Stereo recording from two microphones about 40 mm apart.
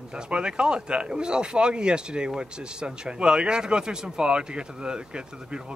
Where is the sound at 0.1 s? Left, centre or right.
Right.